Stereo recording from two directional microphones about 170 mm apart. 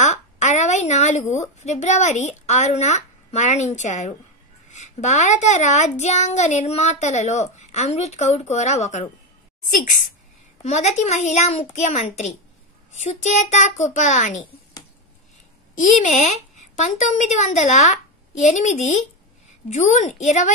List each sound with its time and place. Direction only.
0.0 s a woman's voice: 45° left (ahead or behind)
10.6 s a child's voice: 40° left (ahead or behind)
15.7 s a woman's voice: 45° left (ahead or behind)